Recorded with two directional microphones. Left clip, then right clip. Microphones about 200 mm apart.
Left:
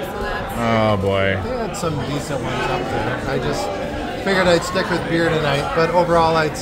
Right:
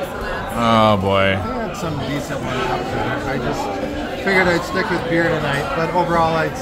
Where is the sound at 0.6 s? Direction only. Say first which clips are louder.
Right 4 dB; centre (ahead or behind).